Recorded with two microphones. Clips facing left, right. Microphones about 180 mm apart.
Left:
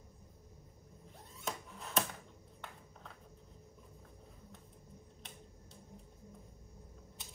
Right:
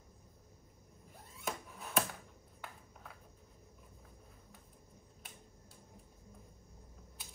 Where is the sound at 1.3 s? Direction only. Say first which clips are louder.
Right 1 dB; centre (ahead or behind).